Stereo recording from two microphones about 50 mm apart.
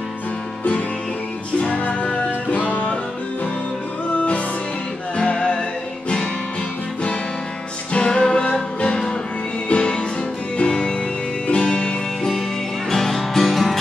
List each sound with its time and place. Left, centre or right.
1.6 s music: left
4.1 s music: left
5.1 s music: centre
7.9 s music: left
12.9 s music: centre